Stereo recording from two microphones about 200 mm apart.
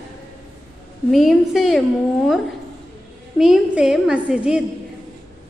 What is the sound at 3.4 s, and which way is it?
A woman's voice, 5° right (ahead or behind).